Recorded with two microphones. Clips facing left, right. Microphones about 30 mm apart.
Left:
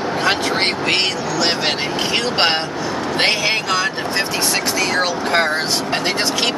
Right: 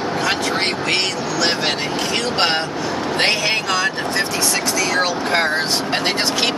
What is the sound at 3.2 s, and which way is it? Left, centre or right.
Speech, centre.